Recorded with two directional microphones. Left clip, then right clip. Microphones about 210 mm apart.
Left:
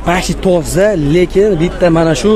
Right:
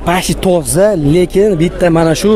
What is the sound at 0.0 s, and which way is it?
Speech, 30° right (ahead or behind).